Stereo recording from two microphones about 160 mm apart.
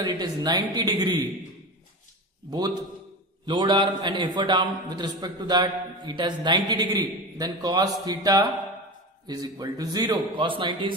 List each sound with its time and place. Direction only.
0.0 s a man's voice: 25° right (ahead or behind)
3.4 s a man's voice: 30° right (ahead or behind)